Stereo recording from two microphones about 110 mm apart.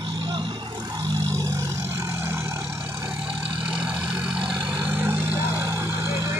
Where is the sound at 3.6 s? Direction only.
10° right (ahead or behind).